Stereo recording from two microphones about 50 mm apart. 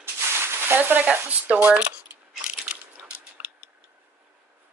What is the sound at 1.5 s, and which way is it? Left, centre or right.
Speech, right.